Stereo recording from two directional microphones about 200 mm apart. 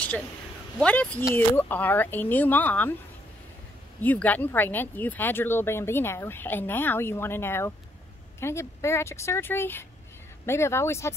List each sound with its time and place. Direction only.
0.7 s speech: 5° left (ahead or behind)
4.0 s speech: 10° left (ahead or behind)